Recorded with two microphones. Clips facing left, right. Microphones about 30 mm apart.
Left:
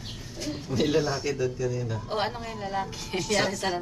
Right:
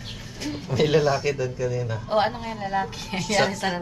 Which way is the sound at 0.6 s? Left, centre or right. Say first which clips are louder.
Right 5 dB; right.